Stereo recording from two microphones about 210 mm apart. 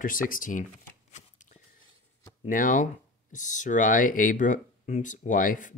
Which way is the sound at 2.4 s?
40° left (ahead or behind).